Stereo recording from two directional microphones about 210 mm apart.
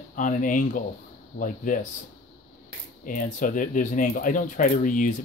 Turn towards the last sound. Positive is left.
turn(degrees=40)  # may be behind; listen again after turning